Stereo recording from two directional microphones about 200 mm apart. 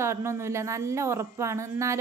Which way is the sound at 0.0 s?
15° right (ahead or behind).